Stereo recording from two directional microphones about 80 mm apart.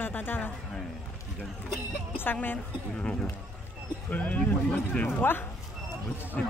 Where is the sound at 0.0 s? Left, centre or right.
Left.